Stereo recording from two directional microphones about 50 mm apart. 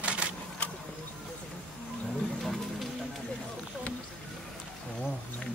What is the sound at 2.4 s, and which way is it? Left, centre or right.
Music, centre.